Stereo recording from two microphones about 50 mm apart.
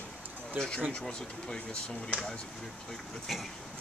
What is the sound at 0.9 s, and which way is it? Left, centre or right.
Speech, centre.